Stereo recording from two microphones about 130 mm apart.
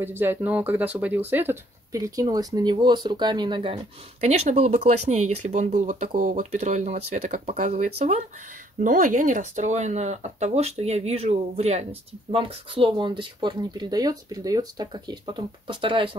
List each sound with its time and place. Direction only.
0.0 s speech: 15° right (ahead or behind); by 8.2 s 60° right (ahead or behind)
8.7 s speech: 90° right; by 16.2 s 40° right (ahead or behind)